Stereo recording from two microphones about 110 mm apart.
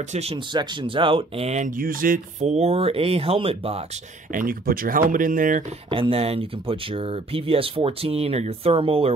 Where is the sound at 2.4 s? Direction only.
85° right; by 3.9 s 60° right (ahead or behind).